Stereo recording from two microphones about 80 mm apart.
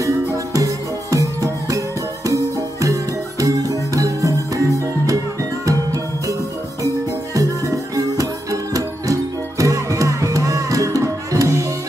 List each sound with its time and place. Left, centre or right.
0.0 s music: right
7.3 s music: right